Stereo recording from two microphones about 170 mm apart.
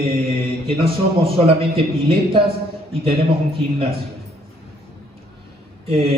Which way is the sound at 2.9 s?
30° right (ahead or behind).